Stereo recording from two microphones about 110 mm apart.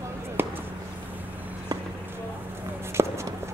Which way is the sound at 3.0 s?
25° right (ahead or behind).